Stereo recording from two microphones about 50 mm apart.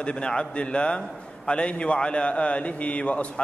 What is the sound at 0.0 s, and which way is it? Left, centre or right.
A man's voice, centre.